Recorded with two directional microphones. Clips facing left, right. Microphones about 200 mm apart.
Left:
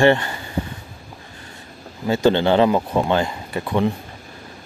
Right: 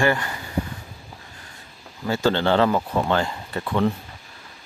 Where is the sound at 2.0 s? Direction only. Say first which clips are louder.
Left 4 dB; 20° left (ahead or behind).